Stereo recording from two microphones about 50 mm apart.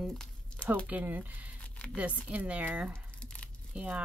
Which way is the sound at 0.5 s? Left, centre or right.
Centre.